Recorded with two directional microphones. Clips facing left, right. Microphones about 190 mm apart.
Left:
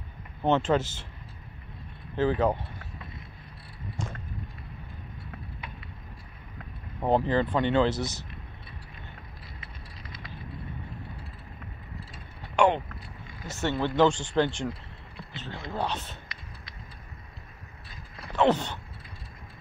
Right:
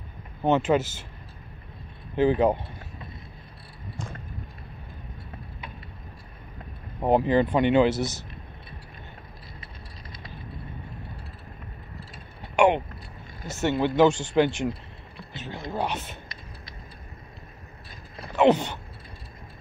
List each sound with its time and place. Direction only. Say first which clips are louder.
0.4 s speech: right 2 dB; 5° right (ahead or behind)
2.1 s speech: right 4 dB; 15° right (ahead or behind)
7.0 s speech: right 4 dB; 15° right (ahead or behind)
12.5 s a sound: right 3 dB; 15° right (ahead or behind)
13.5 s speech: right 4 dB; 10° right (ahead or behind)
18.1 s a sound: right 4 dB; 15° right (ahead or behind)